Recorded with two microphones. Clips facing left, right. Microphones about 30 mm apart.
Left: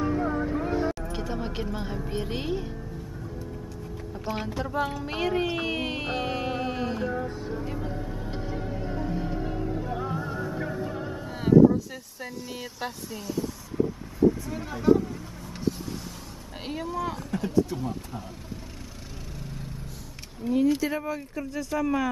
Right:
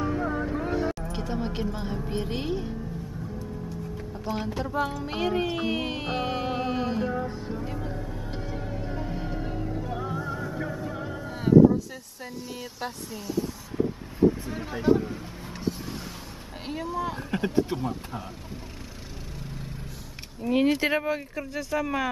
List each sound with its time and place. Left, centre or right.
0.2 s vehicle: centre
1.1 s music: centre
4.6 s music: centre
11.1 s wind noise: centre
12.2 s music: centre
13.4 s a sound: centre
14.5 s speech: centre
16.6 s music: centre
17.3 s speech: right
20.4 s speech: right
21.4 s speech: centre